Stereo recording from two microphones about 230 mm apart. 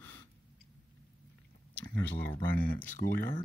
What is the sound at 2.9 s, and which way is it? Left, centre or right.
Speech, left.